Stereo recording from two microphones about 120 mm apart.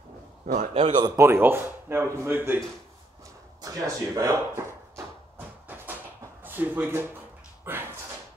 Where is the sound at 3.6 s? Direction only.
30° right (ahead or behind).